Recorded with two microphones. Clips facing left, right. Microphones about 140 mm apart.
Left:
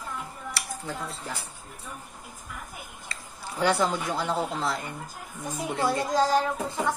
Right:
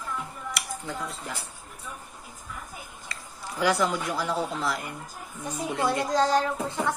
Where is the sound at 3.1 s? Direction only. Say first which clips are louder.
Right 1 dB; 30° left (ahead or behind).